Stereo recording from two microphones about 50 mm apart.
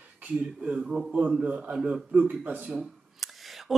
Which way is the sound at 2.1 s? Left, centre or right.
Right.